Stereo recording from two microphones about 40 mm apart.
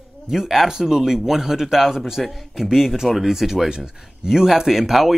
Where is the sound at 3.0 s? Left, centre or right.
Centre.